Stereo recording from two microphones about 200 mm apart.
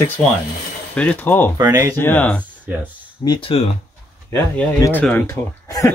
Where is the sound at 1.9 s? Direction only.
10° left (ahead or behind).